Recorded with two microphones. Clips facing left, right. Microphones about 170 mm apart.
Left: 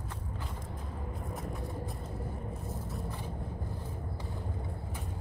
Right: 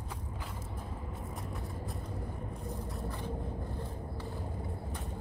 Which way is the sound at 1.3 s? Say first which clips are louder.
Left 3 dB; centre (ahead or behind).